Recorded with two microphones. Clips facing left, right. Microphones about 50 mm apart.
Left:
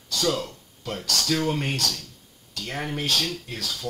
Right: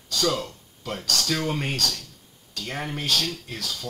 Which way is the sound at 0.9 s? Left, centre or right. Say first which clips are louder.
Left 1 dB; centre.